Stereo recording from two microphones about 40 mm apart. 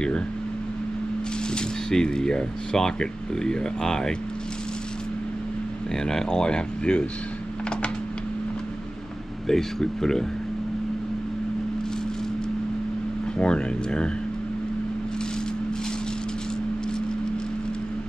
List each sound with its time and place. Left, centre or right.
1.5 s speech: centre
6.0 s speech: centre
9.5 s speech: centre
13.4 s speech: left